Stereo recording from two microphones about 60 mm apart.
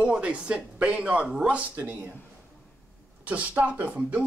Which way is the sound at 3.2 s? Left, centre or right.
Right.